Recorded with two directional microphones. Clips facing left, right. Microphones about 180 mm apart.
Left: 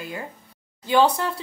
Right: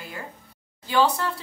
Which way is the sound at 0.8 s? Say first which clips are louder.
Left 3 dB; 20° left (ahead or behind).